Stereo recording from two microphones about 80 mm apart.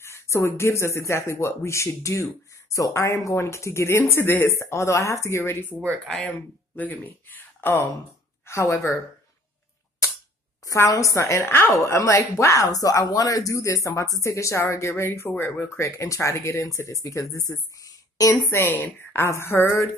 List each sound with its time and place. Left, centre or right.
0.0 s speech: left
6.0 s speech: centre
6.8 s speech: left
8.5 s speech: left
10.6 s a woman's voice: left
15.8 s speech: left
18.3 s a woman's voice: left